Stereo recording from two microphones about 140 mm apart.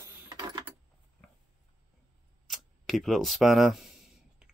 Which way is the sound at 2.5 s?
Centre (ahead or behind).